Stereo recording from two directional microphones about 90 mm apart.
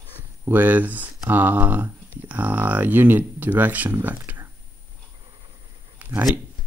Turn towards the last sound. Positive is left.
turn(degrees=-20)  # may be behind; listen again after turning